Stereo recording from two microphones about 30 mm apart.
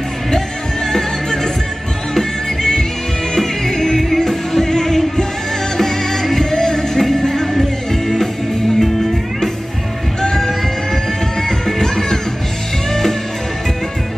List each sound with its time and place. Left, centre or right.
0.9 s music: centre